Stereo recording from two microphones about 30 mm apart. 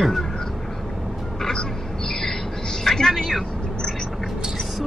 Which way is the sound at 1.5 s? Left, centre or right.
Centre.